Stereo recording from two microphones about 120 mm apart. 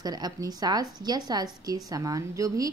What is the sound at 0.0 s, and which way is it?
A woman's voice, 35° right (ahead or behind).